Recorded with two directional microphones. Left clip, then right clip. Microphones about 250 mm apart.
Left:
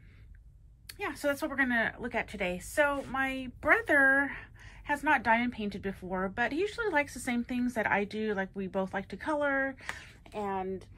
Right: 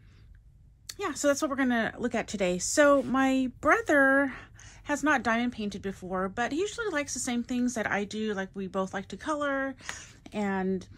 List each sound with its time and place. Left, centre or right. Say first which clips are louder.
0.8 s speech: right 5 dB; centre
10.5 s speech: right 4 dB; right